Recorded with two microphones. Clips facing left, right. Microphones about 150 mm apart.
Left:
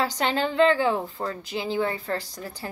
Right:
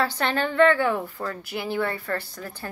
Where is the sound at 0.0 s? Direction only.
15° left (ahead or behind).